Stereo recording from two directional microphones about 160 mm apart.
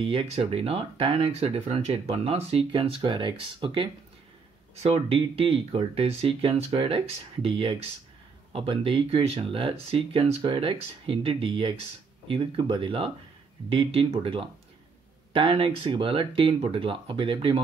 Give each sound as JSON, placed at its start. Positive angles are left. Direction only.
{"t": 0.0, "sound": "speech", "side_deg": -35}